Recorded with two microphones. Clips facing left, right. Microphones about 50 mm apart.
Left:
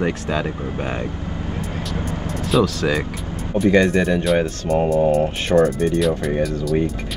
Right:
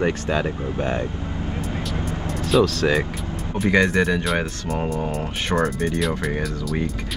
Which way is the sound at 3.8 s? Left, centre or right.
Centre.